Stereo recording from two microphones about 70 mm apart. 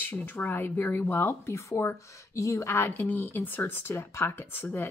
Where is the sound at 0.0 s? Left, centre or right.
Left.